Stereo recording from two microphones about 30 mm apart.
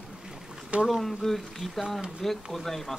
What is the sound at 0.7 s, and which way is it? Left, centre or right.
Speech, right.